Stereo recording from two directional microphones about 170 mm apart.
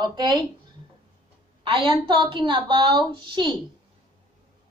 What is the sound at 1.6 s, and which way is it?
A woman's voice, 30° right (ahead or behind).